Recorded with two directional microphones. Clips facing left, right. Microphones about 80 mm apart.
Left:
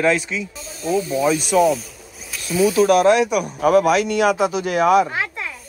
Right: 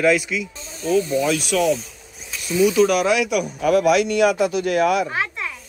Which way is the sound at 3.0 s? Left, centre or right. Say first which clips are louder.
Left 4 dB; left.